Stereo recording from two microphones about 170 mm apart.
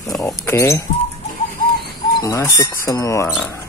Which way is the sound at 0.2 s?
15° left (ahead or behind).